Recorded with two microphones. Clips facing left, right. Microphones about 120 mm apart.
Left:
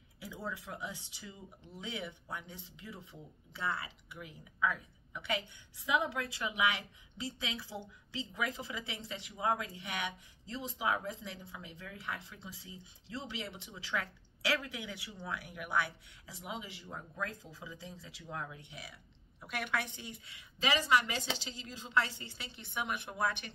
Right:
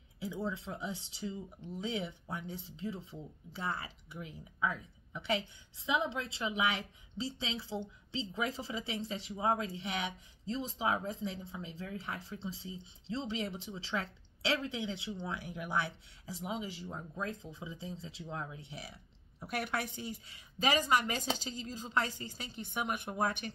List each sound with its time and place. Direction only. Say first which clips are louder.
0.2 s a woman's voice: right 5 dB; 25° right (ahead or behind); by 23.5 s 45° right (ahead or behind)